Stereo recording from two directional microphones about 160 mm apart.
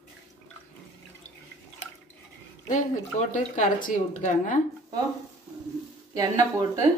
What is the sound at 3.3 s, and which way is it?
Speech, 50° left (ahead or behind).